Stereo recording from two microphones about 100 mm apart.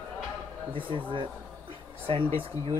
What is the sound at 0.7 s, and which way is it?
Speech, 60° right (ahead or behind).